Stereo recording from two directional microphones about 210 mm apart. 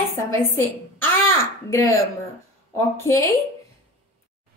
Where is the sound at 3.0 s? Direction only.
15° left (ahead or behind).